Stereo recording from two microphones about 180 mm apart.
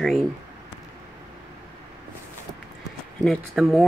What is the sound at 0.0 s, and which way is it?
Speech, centre (ahead or behind).